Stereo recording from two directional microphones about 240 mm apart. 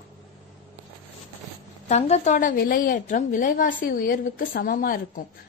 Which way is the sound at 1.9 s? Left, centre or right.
Left.